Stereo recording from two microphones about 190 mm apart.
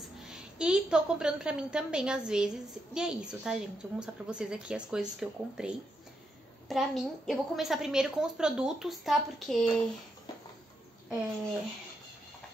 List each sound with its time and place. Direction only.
0.3 s a woman's voice: 5° right (ahead or behind)